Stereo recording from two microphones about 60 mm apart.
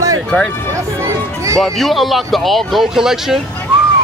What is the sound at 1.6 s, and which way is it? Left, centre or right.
A man's voice, centre.